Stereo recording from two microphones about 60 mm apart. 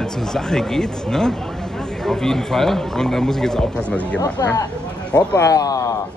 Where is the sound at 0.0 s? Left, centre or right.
Centre.